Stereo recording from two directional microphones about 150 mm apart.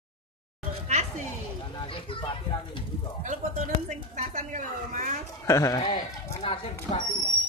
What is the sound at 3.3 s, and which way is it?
Speech, 55° right (ahead or behind).